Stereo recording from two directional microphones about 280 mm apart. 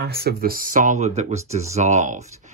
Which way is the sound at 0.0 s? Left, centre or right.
Right.